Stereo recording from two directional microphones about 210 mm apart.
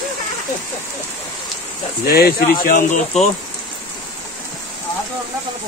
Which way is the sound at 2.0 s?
50° left (ahead or behind).